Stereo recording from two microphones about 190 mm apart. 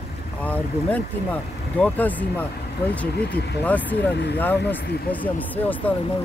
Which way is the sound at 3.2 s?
60° left (ahead or behind).